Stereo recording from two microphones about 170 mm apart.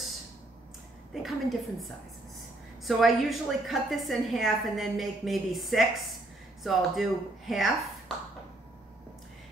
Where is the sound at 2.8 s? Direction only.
Centre (ahead or behind).